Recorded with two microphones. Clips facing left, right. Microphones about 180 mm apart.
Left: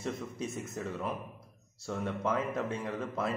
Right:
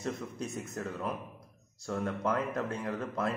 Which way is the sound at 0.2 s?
Centre (ahead or behind).